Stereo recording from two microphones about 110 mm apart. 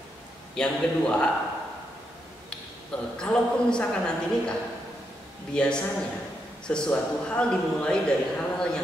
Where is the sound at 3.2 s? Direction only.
10° left (ahead or behind).